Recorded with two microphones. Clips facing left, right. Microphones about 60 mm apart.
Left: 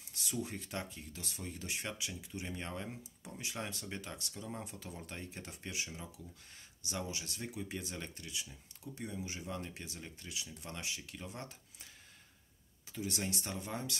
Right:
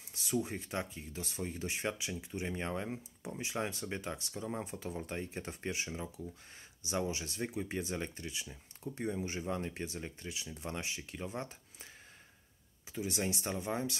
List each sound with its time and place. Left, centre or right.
0.1 s speech: right
12.9 s speech: centre